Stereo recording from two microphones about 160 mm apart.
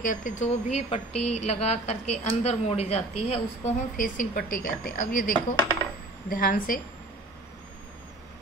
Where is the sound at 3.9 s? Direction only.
60° left (ahead or behind).